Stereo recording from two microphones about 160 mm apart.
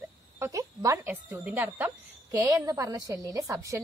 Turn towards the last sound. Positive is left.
turn(degrees=-20)  # may be behind; listen again after turning